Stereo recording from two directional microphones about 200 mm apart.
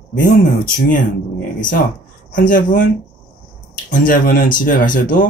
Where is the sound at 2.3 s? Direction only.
40° left (ahead or behind).